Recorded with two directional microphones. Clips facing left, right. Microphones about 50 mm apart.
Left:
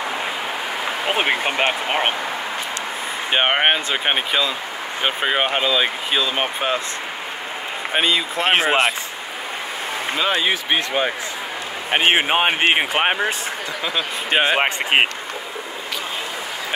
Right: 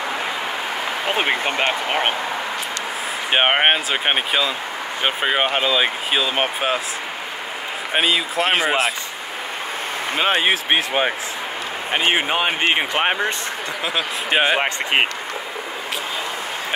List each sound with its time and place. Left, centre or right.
1.1 s speech: centre
3.3 s speech: centre
7.9 s speech: centre
10.1 s speech: right
11.9 s speech: left
12.7 s speech: centre
13.9 s speech: centre
14.6 s speech: left